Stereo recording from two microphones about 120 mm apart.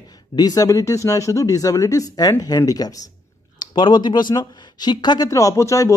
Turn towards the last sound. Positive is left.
turn(degrees=25)  # may be behind; listen again after turning